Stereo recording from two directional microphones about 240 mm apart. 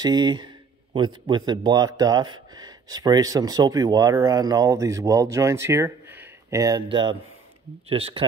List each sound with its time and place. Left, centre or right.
0.0 s speech: centre